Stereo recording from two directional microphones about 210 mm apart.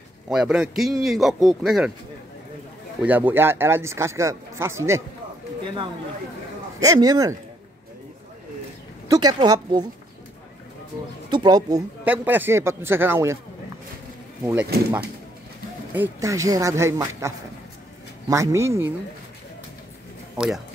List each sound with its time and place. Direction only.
0.3 s speech: 5° right (ahead or behind)
3.0 s speech: 10° right (ahead or behind)
6.8 s speech: 15° right (ahead or behind)
9.1 s speech: 20° right (ahead or behind)
11.2 s speech: 20° right (ahead or behind)
12.0 s speech: 10° right (ahead or behind)
14.4 s speech: 10° right (ahead or behind)
15.9 s speech: 10° right (ahead or behind)
18.3 s speech: 15° right (ahead or behind)
20.3 s speech: centre (ahead or behind)